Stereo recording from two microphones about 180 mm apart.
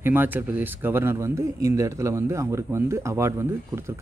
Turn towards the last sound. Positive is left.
turn(degrees=-15)  # may be behind; listen again after turning